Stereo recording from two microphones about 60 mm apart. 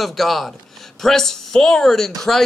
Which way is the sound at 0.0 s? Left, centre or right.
Centre.